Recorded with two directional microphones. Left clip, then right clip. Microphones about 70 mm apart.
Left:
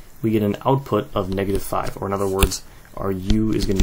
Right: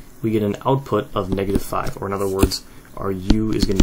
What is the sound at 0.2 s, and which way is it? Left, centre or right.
Speech, left.